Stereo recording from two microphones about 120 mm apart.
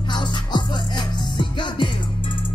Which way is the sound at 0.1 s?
40° left (ahead or behind).